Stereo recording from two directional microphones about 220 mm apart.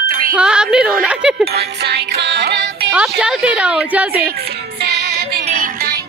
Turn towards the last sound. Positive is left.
turn(degrees=-40)  # may be behind; listen again after turning